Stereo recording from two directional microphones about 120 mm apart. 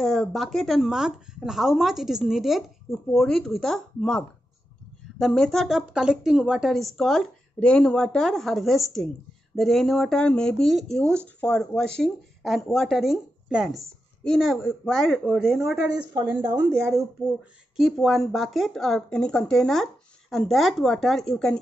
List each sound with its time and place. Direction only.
0.0 s speech: centre (ahead or behind)
5.2 s speech: 5° left (ahead or behind)
15.9 s speech: 35° right (ahead or behind)
17.7 s speech: centre (ahead or behind)